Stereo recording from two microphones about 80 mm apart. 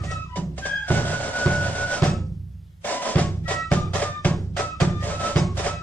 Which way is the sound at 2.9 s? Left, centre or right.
Left.